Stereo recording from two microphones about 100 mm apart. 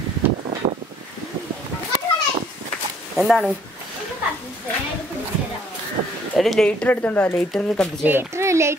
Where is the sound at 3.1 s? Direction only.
Centre (ahead or behind).